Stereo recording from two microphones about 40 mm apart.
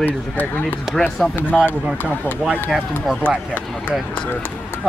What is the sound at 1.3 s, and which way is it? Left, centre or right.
Speech, left.